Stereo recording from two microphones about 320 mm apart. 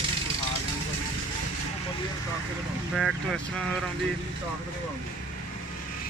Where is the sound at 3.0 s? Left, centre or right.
Centre.